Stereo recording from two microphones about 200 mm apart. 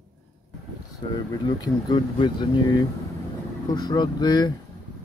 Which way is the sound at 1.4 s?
20° left (ahead or behind).